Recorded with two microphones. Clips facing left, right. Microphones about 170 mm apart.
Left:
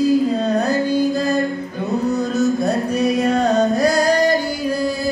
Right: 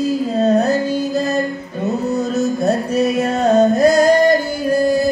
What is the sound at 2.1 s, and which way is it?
Music, 25° right (ahead or behind).